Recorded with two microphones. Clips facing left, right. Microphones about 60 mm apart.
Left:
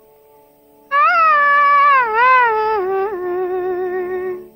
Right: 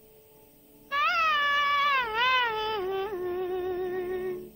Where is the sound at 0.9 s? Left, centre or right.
Left.